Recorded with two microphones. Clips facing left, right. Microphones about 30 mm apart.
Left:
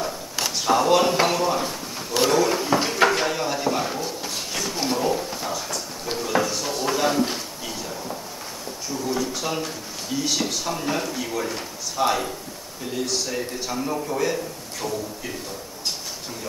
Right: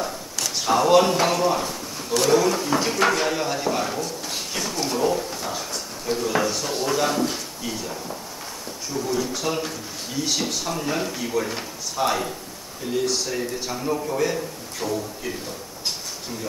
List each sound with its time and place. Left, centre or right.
0.6 s speech: centre
4.7 s a sound: centre
6.1 s a man's voice: centre